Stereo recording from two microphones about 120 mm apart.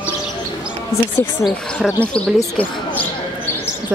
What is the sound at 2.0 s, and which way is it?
Speech, 10° left (ahead or behind).